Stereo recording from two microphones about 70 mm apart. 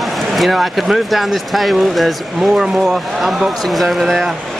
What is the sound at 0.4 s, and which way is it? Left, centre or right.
Speech, centre.